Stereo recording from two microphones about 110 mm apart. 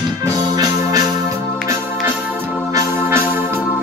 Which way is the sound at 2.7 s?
20° right (ahead or behind).